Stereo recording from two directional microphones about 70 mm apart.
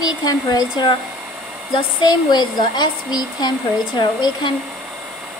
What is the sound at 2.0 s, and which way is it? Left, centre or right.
Speech, left.